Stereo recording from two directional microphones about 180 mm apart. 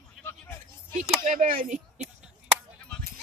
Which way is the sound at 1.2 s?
45° right (ahead or behind).